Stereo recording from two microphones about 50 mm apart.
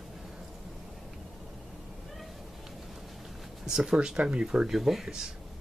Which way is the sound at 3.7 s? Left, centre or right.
Centre.